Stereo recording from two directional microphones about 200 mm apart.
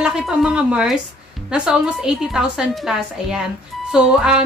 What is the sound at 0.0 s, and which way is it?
Speech, 5° right (ahead or behind).